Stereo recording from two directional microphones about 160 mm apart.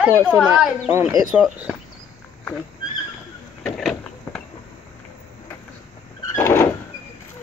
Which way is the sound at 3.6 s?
5° left (ahead or behind).